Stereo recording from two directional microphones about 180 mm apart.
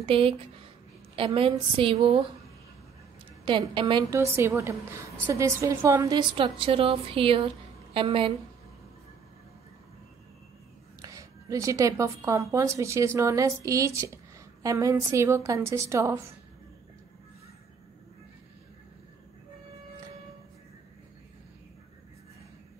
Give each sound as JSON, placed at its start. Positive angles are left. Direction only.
{"t": 0.0, "sound": "a woman's voice", "side_deg": -30}
{"t": 3.4, "sound": "a woman's voice", "side_deg": -25}
{"t": 11.0, "sound": "a woman's voice", "side_deg": -20}